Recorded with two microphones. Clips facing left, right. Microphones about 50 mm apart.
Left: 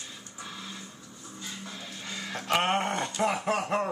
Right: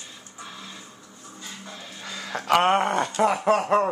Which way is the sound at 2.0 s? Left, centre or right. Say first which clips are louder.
Right 5 dB; right.